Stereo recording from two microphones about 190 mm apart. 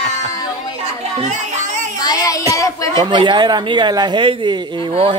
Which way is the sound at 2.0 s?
20° left (ahead or behind).